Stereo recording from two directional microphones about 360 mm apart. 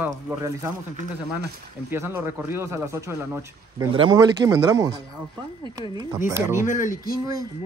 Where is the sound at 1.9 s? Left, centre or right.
Centre.